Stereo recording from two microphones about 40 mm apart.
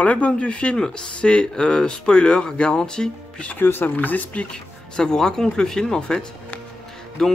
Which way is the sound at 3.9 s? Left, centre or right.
Left.